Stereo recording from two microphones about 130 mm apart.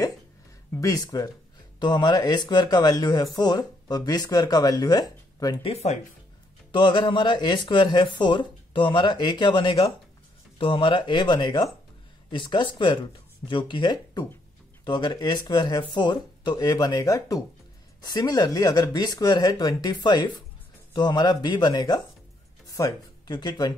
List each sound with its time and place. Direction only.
0.7 s speech: 30° left (ahead or behind)
5.6 s speech: 50° left (ahead or behind)
6.7 s speech: 40° left (ahead or behind)